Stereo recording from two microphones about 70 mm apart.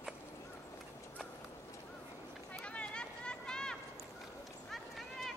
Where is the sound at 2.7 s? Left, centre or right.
Centre.